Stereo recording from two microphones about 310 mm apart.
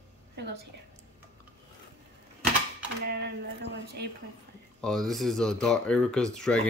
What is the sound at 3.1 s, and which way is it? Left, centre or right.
Speech, right.